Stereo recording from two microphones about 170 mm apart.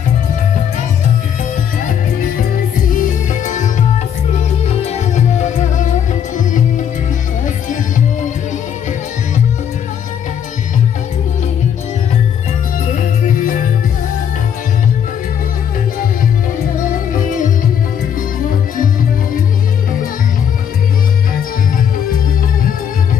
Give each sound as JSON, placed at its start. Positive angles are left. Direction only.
{"t": 3.0, "sound": "music", "side_deg": 45}
{"t": 12.9, "sound": "music", "side_deg": 55}